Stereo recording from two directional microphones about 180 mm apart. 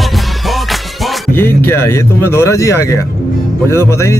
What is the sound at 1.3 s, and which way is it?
Speech, 15° left (ahead or behind).